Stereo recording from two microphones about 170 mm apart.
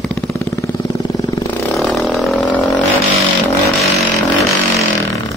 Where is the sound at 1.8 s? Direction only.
Centre (ahead or behind).